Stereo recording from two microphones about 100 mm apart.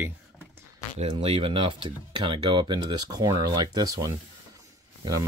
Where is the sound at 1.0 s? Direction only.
90° right.